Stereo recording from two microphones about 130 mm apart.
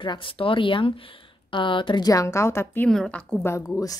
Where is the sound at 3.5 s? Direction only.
25° left (ahead or behind).